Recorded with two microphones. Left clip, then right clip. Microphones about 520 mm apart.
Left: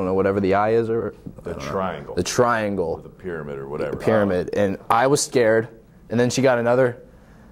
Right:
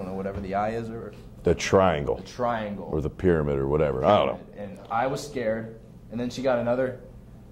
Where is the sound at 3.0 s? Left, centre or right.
Right.